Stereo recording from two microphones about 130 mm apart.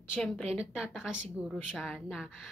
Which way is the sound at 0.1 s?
10° left (ahead or behind).